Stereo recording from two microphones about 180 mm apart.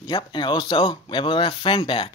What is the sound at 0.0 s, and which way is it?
Speech, 25° left (ahead or behind).